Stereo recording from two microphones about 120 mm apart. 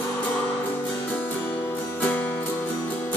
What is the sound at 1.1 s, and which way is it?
Music, 15° left (ahead or behind).